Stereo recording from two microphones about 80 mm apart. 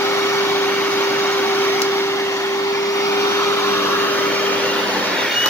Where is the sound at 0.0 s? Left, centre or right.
Left.